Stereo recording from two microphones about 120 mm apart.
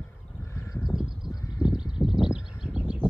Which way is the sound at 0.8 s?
5° right (ahead or behind).